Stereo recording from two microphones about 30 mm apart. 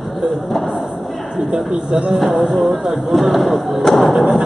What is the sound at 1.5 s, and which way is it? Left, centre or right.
Speech, right.